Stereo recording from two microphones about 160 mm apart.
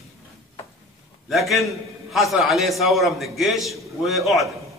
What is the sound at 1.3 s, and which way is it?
A man's voice, centre (ahead or behind).